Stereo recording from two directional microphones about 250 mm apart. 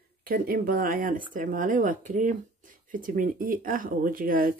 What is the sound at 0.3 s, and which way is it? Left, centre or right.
Speech, right.